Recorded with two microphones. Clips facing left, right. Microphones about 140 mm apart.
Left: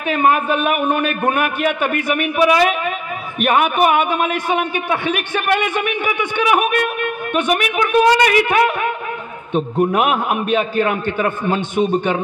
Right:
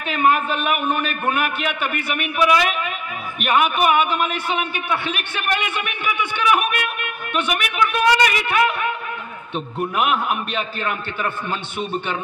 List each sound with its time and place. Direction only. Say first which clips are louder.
0.1 s a man's voice: left 3 dB; 50° left (ahead or behind)